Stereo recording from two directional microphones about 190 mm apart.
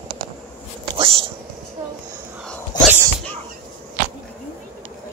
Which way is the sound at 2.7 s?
20° left (ahead or behind).